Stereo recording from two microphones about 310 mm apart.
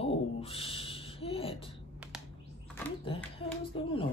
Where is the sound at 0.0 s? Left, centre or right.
Centre.